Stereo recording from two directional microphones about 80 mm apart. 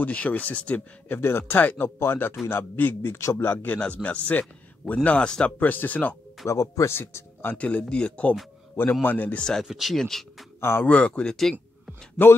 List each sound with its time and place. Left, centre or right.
0.0 s speech: centre; by 3.5 s left
3.5 s speech: centre
6.4 s speech: left
7.5 s speech: centre
9.4 s speech: centre
10.6 s a man's voice: left
10.9 s speech: centre